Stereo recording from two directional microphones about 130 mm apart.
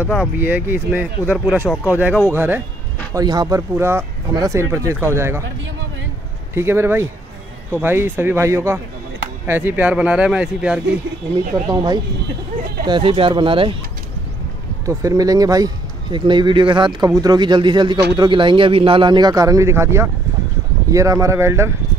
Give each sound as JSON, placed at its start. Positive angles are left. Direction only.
{"t": 0.0, "sound": "speech", "side_deg": 10}
{"t": 0.4, "sound": "speech", "side_deg": -15}
{"t": 3.1, "sound": "speech", "side_deg": -30}
{"t": 3.7, "sound": "speech", "side_deg": -20}
{"t": 6.5, "sound": "speech", "side_deg": -20}
{"t": 11.6, "sound": "speech", "side_deg": -35}
{"t": 14.9, "sound": "speech", "side_deg": -25}